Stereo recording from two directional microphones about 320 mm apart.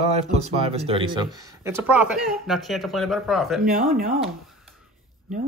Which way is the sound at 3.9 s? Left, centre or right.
Right.